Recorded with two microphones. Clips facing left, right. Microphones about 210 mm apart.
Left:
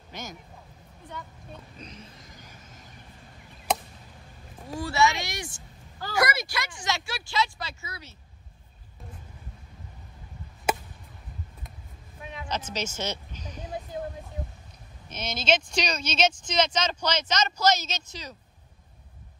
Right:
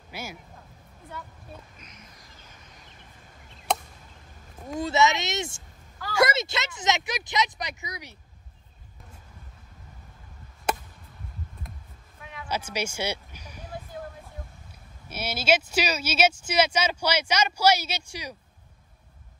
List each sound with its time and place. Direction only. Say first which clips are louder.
0.1 s speech: right 1 dB; 10° right (ahead or behind)
1.8 s speech: left 6 dB; 30° left (ahead or behind)
4.7 s speech: right 2 dB; 20° right (ahead or behind)
10.7 s chop: left 1 dB; 5° left (ahead or behind)
12.2 s a sound: left 3 dB; 20° left (ahead or behind)
12.4 s speech: right 2 dB; 10° right (ahead or behind)
13.7 s a sound: left 4 dB; 20° left (ahead or behind)
15.0 s speech: right 2 dB; 10° right (ahead or behind)